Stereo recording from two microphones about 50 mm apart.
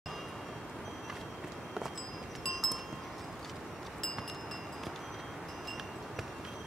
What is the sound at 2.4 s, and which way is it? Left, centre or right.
Wind chime, centre.